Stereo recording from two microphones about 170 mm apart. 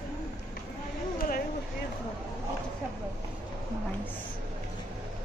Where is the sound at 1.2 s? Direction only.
60° left (ahead or behind).